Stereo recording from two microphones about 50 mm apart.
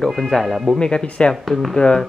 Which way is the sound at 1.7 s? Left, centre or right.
Centre.